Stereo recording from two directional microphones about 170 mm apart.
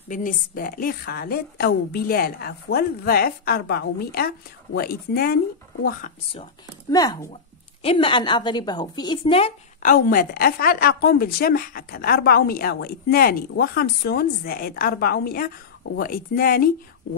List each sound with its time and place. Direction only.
0.1 s a woman's voice: 50° left (ahead or behind)
6.9 s a woman's voice: 20° left (ahead or behind)
7.8 s a woman's voice: 35° left (ahead or behind)
9.8 s a woman's voice: 55° left (ahead or behind)